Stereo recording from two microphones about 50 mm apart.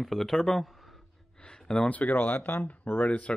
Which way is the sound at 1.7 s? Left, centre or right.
Left.